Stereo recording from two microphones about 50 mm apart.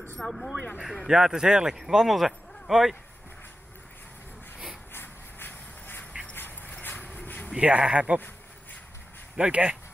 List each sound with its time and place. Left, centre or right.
0.2 s speech: centre
0.8 s speech: centre
4.9 s shuffle: left
6.3 s a sound: left
7.8 s speech: right
9.4 s speech: right